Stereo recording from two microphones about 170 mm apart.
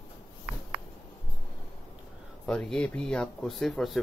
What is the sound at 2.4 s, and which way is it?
Speech, 5° left (ahead or behind).